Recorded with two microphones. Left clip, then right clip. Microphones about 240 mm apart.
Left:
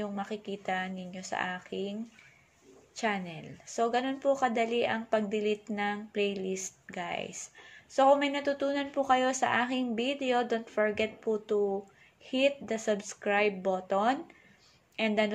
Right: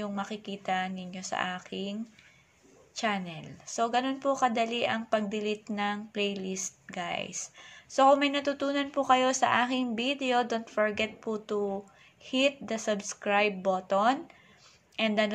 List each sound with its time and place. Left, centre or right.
0.0 s speech: centre